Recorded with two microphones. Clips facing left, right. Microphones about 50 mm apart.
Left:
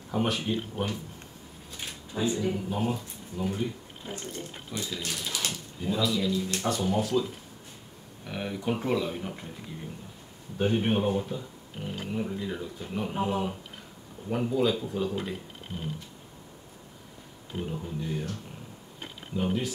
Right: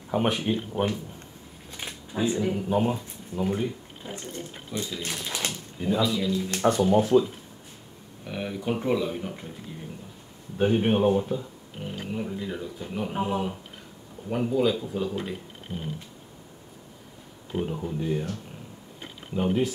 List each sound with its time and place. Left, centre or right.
0.1 s speech: right
4.6 s speech: centre
5.0 s speech: right
5.9 s speech: centre
6.3 s speech: right
8.3 s speech: centre
10.6 s speech: centre
17.6 s speech: right
19.3 s speech: right